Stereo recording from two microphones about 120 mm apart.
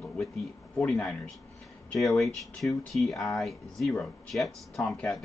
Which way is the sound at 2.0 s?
Centre (ahead or behind).